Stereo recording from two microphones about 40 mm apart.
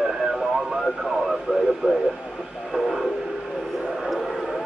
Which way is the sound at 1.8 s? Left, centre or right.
Right.